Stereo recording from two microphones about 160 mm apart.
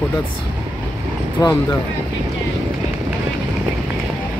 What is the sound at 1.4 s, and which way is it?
Speech, 25° left (ahead or behind).